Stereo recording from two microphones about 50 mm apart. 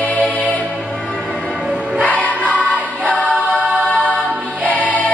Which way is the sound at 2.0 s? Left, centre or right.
Left.